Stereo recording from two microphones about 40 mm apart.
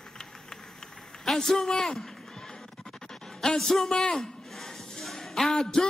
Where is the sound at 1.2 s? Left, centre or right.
Centre.